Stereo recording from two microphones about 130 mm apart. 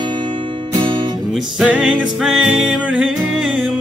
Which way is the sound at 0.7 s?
40° right (ahead or behind).